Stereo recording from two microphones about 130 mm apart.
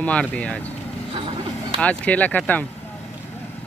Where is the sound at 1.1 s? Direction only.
40° right (ahead or behind).